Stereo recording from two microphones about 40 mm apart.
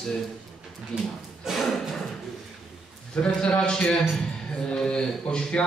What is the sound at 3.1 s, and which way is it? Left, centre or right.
A man's voice, left.